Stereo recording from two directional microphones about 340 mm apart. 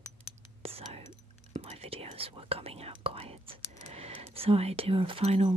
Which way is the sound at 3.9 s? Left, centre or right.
Centre.